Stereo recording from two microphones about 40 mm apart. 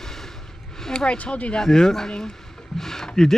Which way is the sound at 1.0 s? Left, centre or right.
Left.